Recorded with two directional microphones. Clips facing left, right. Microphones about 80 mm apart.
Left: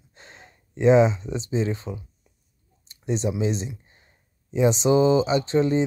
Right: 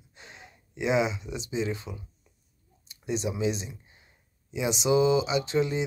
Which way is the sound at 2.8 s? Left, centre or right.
Left.